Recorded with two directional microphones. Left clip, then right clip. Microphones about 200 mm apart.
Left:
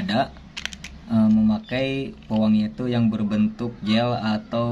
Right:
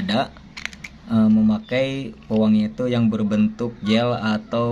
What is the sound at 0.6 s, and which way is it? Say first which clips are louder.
Typing: even; 5° right (ahead or behind).